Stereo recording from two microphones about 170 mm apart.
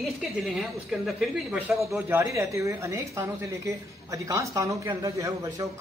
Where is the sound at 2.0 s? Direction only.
15° right (ahead or behind).